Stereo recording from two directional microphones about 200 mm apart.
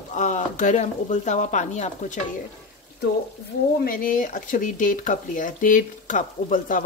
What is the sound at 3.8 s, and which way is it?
Speech, 45° left (ahead or behind).